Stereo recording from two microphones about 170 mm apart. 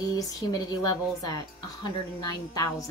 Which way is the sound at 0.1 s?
20° left (ahead or behind).